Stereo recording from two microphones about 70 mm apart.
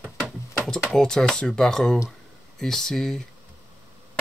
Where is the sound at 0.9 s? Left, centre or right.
Centre.